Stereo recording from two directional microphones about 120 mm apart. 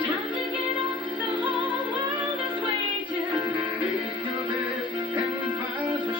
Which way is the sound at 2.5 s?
40° right (ahead or behind).